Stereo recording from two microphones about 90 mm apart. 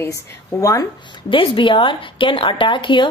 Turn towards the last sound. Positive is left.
turn(degrees=65)  # may be behind; listen again after turning